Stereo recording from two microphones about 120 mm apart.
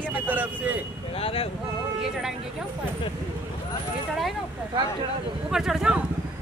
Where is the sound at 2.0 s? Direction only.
5° right (ahead or behind).